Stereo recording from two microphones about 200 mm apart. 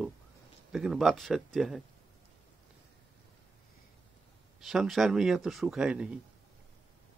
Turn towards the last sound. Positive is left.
turn(degrees=-5)  # may be behind; listen again after turning